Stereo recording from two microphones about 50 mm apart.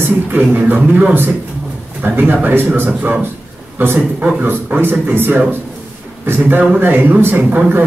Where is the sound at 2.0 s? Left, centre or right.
Right.